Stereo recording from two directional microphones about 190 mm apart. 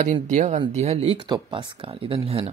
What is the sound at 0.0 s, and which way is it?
Speech, 40° right (ahead or behind).